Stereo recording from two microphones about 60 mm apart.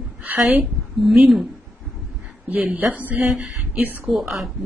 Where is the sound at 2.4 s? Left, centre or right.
Right.